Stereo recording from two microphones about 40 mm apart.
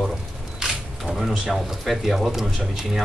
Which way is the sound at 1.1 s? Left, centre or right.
Centre.